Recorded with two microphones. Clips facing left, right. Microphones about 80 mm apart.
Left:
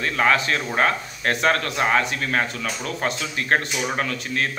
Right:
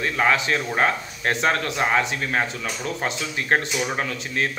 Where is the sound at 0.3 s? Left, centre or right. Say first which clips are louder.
Left 1 dB; centre.